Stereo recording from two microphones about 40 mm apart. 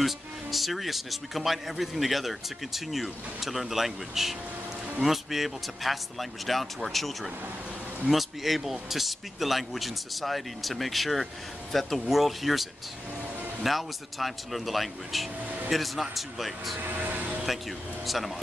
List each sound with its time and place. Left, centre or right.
0.0 s speech: centre
13.7 s speech: centre
16.8 s vehicle: right
18.0 s speech: centre